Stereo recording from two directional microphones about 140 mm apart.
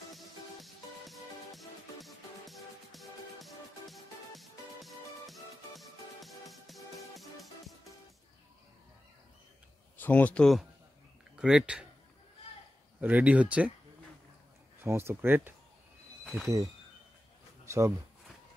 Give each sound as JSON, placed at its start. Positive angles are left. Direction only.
{"t": 0.1, "sound": "music", "side_deg": 0}
{"t": 9.9, "sound": "speech", "side_deg": 10}
{"t": 13.0, "sound": "speech", "side_deg": -10}
{"t": 14.8, "sound": "speech", "side_deg": -20}